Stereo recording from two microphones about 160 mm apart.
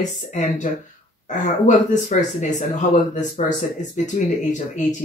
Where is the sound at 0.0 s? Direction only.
50° left (ahead or behind).